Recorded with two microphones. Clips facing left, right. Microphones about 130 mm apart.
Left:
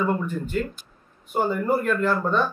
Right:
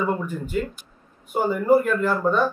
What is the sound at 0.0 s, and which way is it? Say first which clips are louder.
A man's voice: even; 5° right (ahead or behind).